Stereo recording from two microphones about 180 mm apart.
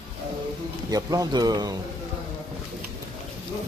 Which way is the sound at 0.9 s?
20° right (ahead or behind).